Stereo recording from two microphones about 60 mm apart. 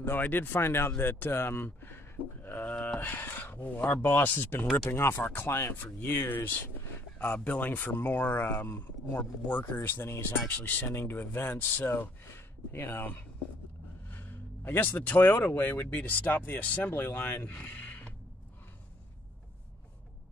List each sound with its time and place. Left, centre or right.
0.0 s speech: left
2.4 s a sound: left
3.0 s speech: left
3.6 s speech: left
4.8 s speech: left
5.2 s speech: left
9.8 s speech: left
17.6 s a sound: left